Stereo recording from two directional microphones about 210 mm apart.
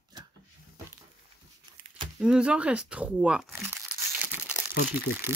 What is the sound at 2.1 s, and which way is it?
Speech, 5° right (ahead or behind).